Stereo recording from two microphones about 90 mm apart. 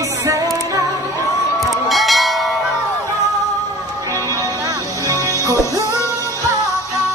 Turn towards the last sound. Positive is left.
turn(degrees=-35)  # may be behind; listen again after turning